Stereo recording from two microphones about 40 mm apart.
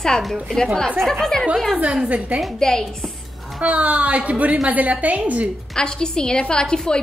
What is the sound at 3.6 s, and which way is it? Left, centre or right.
A woman's voice, right.